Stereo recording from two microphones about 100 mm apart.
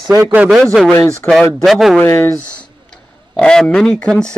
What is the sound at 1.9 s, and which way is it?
Speech, 25° left (ahead or behind).